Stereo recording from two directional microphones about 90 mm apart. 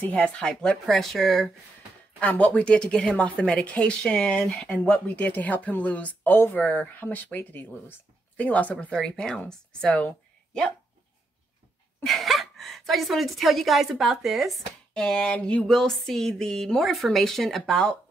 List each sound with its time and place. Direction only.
0.0 s a woman's voice: 15° left (ahead or behind)
2.1 s a woman's voice: 15° left (ahead or behind)
4.6 s a woman's voice: 15° left (ahead or behind)
12.0 s a woman's voice: centre (ahead or behind)